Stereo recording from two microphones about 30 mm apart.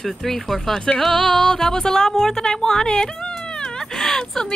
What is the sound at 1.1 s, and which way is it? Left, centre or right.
Music, centre.